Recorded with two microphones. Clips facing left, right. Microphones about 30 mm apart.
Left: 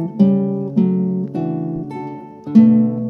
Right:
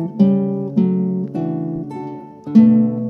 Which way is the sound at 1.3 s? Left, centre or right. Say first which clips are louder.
Even; centre.